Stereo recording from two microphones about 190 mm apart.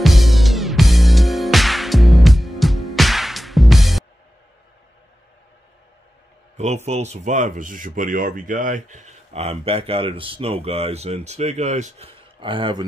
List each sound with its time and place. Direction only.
0.0 s music: centre (ahead or behind)
6.5 s a sound: 35° right (ahead or behind)
6.9 s speech: 35° right (ahead or behind)